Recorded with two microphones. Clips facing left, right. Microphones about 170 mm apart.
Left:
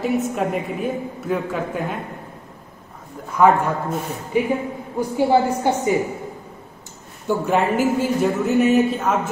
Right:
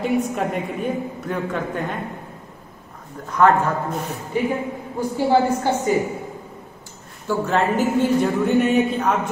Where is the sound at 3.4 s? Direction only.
10° left (ahead or behind).